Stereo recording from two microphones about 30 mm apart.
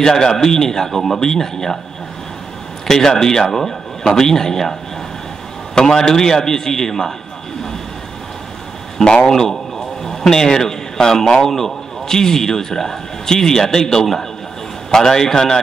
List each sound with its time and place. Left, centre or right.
0.0 s speech: centre
2.9 s speech: centre
5.8 s a man's voice: centre
8.9 s speech: left
9.3 s speech: centre